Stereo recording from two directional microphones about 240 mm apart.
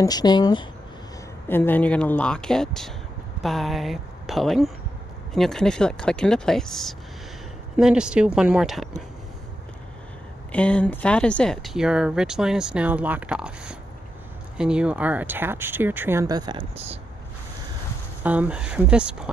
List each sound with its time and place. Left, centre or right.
0.0 s speech: centre
10.5 s speech: centre
18.2 s speech: centre